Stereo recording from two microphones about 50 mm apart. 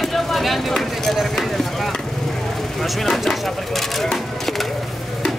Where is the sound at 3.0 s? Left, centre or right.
Centre.